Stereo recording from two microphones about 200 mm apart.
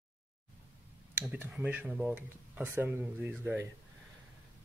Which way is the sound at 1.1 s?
10° right (ahead or behind).